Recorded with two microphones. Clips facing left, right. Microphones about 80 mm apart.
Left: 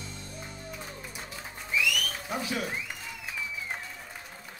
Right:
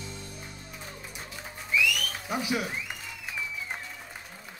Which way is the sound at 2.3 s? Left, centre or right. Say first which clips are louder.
Right 4 dB; centre.